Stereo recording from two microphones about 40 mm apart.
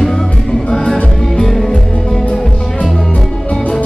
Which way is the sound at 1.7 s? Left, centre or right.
Left.